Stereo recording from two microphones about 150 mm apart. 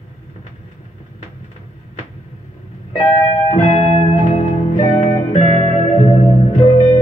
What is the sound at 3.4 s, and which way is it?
Music, 40° left (ahead or behind).